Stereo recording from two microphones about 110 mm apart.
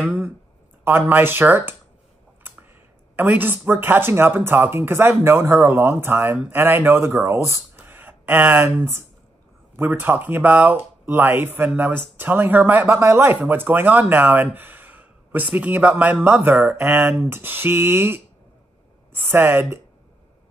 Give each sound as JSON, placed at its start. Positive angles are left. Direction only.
{"t": 0.0, "sound": "speech", "side_deg": -10}
{"t": 3.2, "sound": "speech", "side_deg": -15}